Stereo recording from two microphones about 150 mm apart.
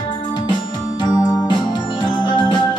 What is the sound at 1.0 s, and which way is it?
Music, 25° left (ahead or behind).